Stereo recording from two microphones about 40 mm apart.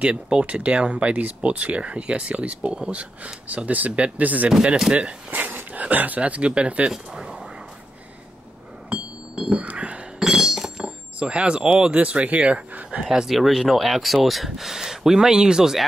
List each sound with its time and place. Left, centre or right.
0.0 s speech: right
6.9 s speech: centre
8.8 s music: right
9.7 s a sound: right
10.2 s chink: centre
10.8 s speech: right
13.0 s speech: centre